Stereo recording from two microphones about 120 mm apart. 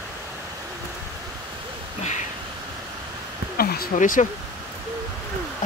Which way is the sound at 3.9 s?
90° left.